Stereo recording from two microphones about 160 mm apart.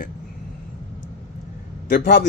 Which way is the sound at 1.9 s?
90° left.